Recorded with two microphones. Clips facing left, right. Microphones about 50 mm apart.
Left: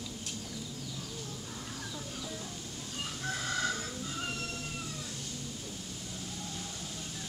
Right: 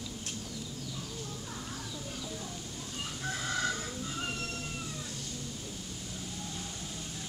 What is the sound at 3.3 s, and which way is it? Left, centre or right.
Chicken, centre.